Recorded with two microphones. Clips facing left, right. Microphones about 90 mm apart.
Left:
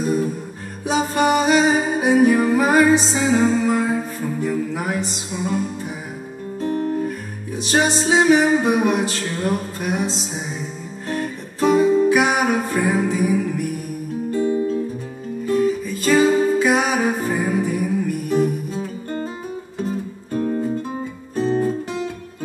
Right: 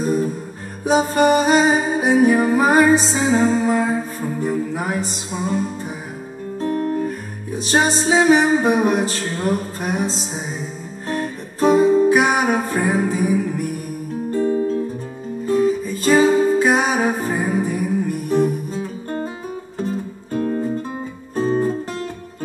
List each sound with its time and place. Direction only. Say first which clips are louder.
0.8 s music: right 3 dB; 40° right (ahead or behind)
14.3 s music: right 1 dB; 5° left (ahead or behind)
15.4 s music: right 2 dB; 35° right (ahead or behind)
21.4 s music: right 1 dB; 40° right (ahead or behind)